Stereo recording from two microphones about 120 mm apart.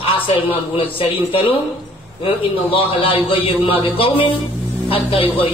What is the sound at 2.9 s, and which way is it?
Speech, 50° left (ahead or behind).